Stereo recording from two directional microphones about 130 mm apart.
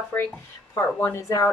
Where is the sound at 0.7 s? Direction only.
20° left (ahead or behind).